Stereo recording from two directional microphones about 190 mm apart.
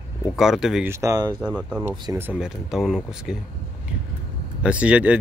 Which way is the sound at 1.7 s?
15° right (ahead or behind).